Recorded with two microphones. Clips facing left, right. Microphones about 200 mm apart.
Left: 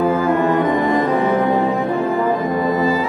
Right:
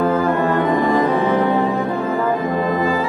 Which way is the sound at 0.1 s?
15° left (ahead or behind).